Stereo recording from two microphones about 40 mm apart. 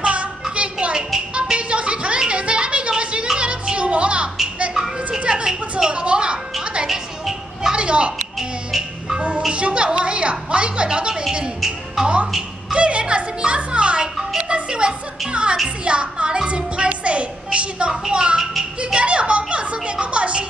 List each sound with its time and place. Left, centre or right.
0.0 s a sound: right
3.3 s music: right
4.7 s music: centre
5.3 s a sound: centre
6.6 s music: right
6.9 s music: centre
7.7 s a sound: right
9.1 s music: right
9.5 s a woman's voice: right
12.7 s music: right
14.5 s a woman's voice: right
18.4 s a child's voice: centre
18.9 s a woman's voice: right